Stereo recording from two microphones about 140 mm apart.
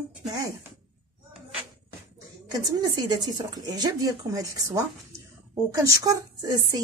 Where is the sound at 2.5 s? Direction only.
25° right (ahead or behind).